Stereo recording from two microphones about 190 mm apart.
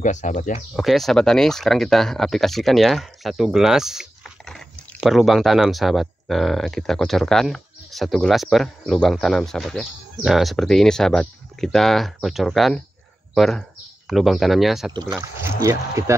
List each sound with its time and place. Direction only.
0.0 s speech: 40° left (ahead or behind)
0.7 s speech: centre (ahead or behind)
14.9 s speech: 25° right (ahead or behind)